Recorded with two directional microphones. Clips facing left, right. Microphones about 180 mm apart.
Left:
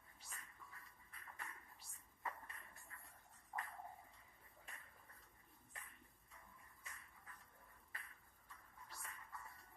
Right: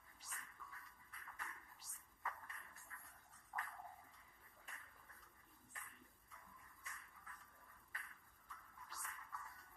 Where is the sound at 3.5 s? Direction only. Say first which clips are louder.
Left 1 dB; 25° left (ahead or behind).